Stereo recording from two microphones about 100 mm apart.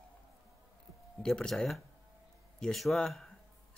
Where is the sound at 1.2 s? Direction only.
5° left (ahead or behind).